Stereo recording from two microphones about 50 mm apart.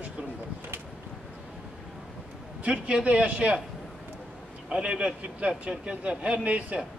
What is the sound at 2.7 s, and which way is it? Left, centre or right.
Speech, right.